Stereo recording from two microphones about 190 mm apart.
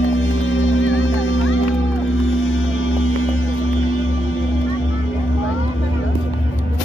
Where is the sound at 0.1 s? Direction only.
90° left.